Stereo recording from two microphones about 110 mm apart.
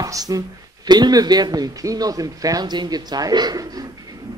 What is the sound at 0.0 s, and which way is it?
Speech, 35° right (ahead or behind).